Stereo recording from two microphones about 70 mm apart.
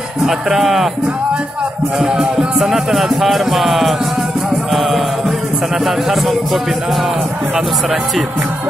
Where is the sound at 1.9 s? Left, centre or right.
Centre.